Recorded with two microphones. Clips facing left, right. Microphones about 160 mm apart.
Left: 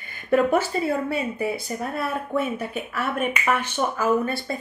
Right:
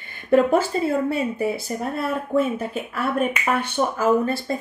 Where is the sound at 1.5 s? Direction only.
30° right (ahead or behind).